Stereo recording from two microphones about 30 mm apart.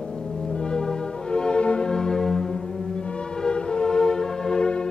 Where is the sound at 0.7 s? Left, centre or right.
Left.